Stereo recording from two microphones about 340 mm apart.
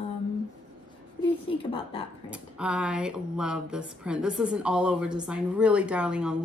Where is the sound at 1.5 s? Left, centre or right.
Centre.